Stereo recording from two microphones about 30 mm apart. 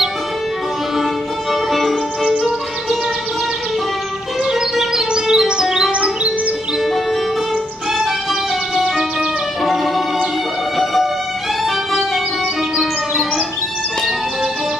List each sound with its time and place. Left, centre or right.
1.5 s music: centre
4.5 s music: centre
8.0 s music: centre
11.6 s music: centre